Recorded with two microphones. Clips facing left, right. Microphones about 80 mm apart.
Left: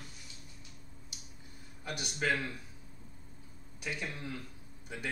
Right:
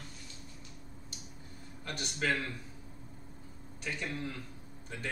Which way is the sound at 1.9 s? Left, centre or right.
Centre.